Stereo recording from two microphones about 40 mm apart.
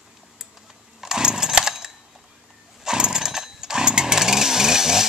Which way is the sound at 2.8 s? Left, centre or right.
Centre.